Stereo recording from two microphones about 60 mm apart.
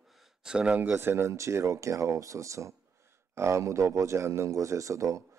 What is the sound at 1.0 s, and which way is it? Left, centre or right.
A man's voice, right.